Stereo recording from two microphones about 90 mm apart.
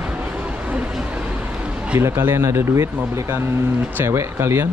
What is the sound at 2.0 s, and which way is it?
Speech, 25° right (ahead or behind).